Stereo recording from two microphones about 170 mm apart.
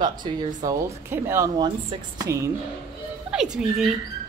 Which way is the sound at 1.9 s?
30° right (ahead or behind).